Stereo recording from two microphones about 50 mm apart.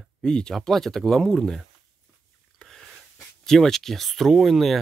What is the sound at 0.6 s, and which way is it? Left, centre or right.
Speech, centre.